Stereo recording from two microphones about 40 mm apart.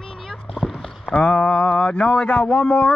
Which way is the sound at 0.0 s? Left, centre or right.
Centre.